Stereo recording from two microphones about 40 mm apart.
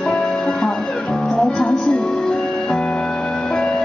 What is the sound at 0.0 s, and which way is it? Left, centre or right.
Music, centre.